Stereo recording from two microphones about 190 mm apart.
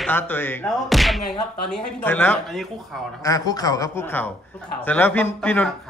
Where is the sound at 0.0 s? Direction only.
10° left (ahead or behind).